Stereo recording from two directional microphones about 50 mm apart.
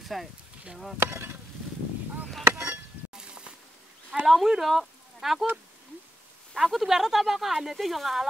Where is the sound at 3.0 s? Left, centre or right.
Right.